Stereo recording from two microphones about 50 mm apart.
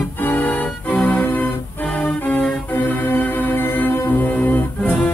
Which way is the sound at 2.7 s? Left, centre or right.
Left.